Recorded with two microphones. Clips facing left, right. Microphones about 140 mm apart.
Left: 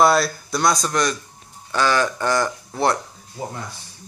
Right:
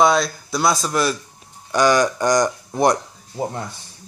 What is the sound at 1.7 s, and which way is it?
Speech, 15° right (ahead or behind).